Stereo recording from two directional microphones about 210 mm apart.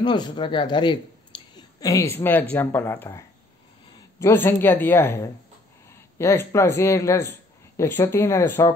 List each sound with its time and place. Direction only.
0.0 s a woman's voice: 20° left (ahead or behind)